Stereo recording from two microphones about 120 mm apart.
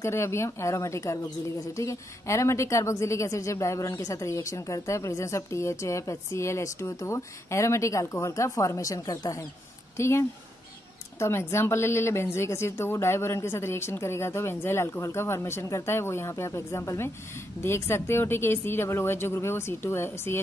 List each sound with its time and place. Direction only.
0.0 s a woman's voice: 20° left (ahead or behind)